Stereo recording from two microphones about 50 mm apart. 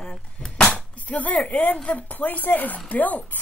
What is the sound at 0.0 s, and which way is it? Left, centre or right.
Cap gun, centre.